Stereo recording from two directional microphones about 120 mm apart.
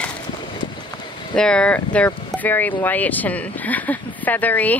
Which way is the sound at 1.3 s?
10° left (ahead or behind).